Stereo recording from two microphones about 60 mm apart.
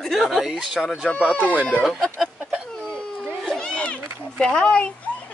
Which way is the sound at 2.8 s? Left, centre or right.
Centre.